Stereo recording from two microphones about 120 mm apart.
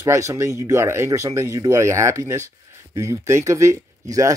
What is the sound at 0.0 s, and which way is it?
Speech, 25° right (ahead or behind).